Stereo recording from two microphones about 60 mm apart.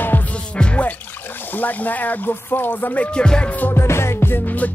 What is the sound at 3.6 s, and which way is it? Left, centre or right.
Music, left.